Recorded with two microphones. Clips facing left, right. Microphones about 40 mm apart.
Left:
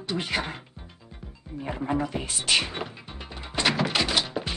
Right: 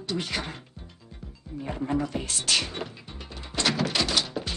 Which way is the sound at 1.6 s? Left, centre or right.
Centre.